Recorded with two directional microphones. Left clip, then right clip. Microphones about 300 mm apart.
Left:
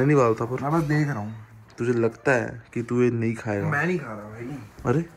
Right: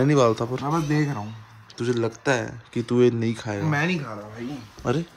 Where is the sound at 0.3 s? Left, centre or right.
Centre.